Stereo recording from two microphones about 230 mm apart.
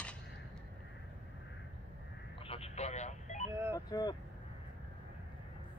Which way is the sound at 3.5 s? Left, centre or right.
Centre.